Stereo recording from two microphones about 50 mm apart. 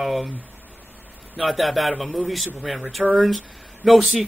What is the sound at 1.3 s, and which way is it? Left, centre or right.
A man's voice, centre.